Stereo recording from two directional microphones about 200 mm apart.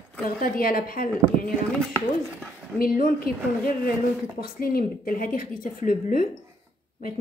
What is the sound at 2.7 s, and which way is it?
Speech, 45° left (ahead or behind).